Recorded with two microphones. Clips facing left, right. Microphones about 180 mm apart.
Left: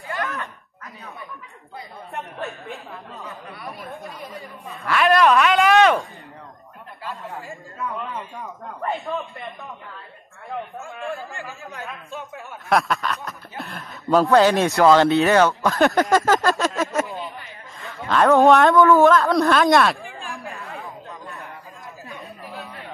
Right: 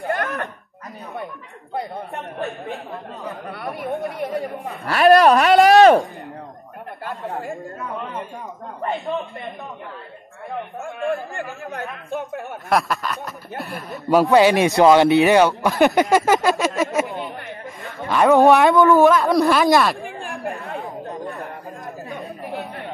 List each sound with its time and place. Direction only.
0.0 s a sound: 60° right (ahead or behind)
1.7 s chatter: 60° right (ahead or behind)
3.4 s speech: 60° right (ahead or behind)
4.8 s speech: 40° right (ahead or behind)
7.2 s speech: 55° right (ahead or behind)
8.8 s speech: 15° right (ahead or behind)
12.1 s speech: 60° right (ahead or behind)
12.6 s a sound: centre (ahead or behind)
14.1 s a man's voice: 10° right (ahead or behind)
19.3 s a sound: centre (ahead or behind)
20.2 s chatter: 60° right (ahead or behind)